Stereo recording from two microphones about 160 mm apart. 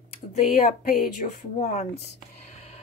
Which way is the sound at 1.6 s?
45° left (ahead or behind).